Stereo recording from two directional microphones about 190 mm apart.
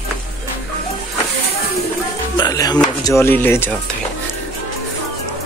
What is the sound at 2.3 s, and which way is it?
Music, 20° left (ahead or behind).